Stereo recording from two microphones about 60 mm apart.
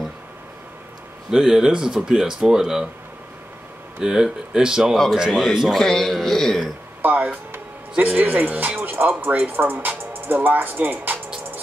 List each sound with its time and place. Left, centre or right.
1.3 s speech: centre
4.0 s a man's voice: centre
7.0 s speech: right